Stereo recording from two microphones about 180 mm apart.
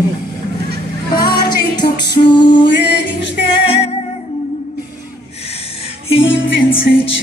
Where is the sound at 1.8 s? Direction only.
30° left (ahead or behind).